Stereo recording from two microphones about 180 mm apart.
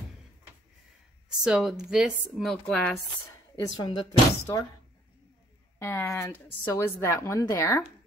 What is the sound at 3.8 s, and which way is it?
Speech, 25° left (ahead or behind).